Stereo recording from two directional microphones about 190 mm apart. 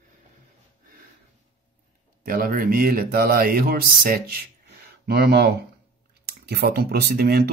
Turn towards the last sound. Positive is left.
turn(degrees=-55)  # may be behind; listen again after turning